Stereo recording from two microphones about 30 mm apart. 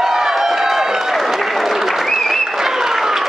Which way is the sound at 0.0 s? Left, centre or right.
Centre.